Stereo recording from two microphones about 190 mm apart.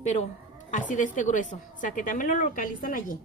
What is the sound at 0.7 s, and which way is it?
A woman's voice, 40° left (ahead or behind).